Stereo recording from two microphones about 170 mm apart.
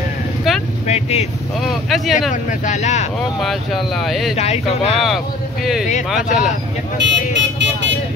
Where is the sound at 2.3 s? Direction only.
50° left (ahead or behind).